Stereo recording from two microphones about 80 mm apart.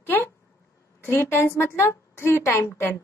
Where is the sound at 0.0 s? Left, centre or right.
Left.